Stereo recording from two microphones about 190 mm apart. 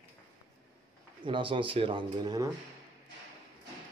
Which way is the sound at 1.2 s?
25° right (ahead or behind).